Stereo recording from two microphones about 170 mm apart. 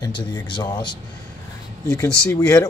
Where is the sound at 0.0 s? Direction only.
25° left (ahead or behind).